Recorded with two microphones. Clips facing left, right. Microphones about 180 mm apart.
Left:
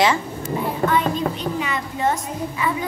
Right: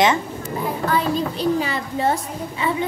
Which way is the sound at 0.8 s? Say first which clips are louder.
Left 1 dB; 35° right (ahead or behind).